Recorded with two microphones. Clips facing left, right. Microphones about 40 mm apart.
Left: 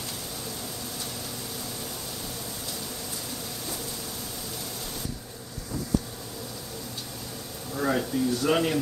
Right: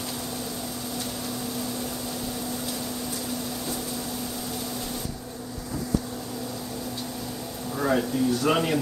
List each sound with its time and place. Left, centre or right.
7.8 s speech: centre